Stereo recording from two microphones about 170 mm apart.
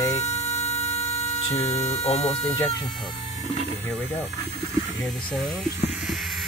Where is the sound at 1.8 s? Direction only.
40° left (ahead or behind).